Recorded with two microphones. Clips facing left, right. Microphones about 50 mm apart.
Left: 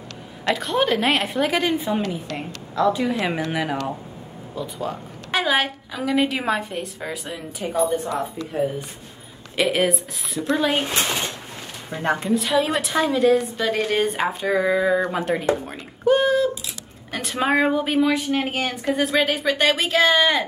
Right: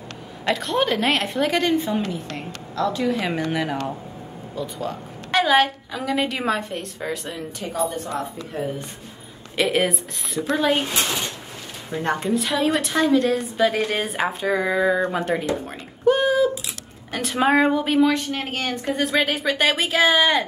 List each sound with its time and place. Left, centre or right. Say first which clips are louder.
0.5 s a woman's voice: left 1 dB; centre
7.8 s a woman's voice: left 3 dB; centre
9.6 s a woman's voice: left 1 dB; centre
12.2 s a woman's voice: left 2 dB; centre
15.5 s a sound: left 1 dB; centre
17.1 s a woman's voice: right 2 dB; centre